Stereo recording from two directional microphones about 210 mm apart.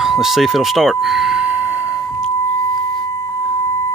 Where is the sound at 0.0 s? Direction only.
Centre (ahead or behind).